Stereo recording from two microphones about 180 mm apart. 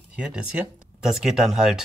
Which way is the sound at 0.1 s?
5° right (ahead or behind).